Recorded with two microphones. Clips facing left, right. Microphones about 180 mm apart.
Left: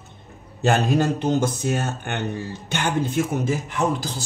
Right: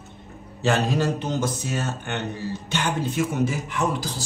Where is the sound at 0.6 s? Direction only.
50° left (ahead or behind).